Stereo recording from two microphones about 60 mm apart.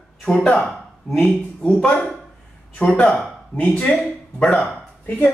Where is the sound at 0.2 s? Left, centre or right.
Centre.